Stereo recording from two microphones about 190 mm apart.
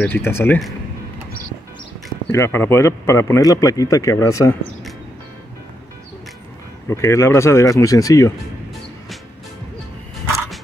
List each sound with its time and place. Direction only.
0.0 s speech: 10° left (ahead or behind)
2.3 s speech: 15° left (ahead or behind)
6.9 s speech: 15° left (ahead or behind)